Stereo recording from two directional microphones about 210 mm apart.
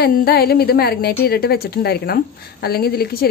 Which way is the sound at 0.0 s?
50° left (ahead or behind).